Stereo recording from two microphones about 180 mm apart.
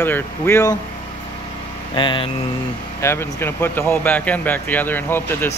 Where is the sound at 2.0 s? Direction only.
25° left (ahead or behind).